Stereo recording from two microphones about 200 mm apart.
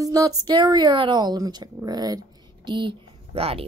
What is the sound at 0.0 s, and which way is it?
Speech, 15° right (ahead or behind).